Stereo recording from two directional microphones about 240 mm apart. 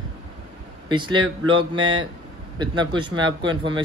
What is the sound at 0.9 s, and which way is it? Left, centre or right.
A man's voice, centre.